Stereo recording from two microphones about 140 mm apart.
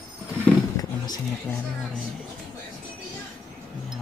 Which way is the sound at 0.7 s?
30° left (ahead or behind).